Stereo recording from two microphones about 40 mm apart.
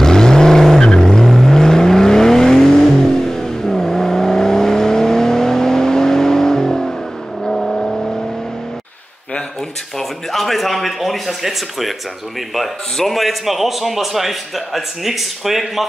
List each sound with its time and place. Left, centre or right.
0.0 s vehicle: centre
7.4 s vehicle: centre
9.9 s a sound: centre
12.5 s a man's voice: centre